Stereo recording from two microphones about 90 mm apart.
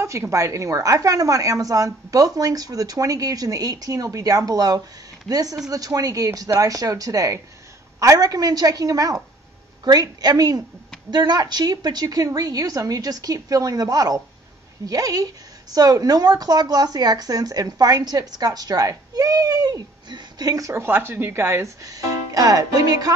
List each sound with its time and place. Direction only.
0.0 s a woman's voice: 30° right (ahead or behind)
21.8 s a woman's voice: 40° right (ahead or behind)